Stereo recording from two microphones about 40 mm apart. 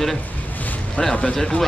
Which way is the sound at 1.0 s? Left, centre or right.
Left.